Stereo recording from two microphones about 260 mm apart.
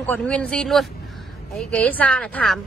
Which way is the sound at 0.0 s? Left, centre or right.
Centre.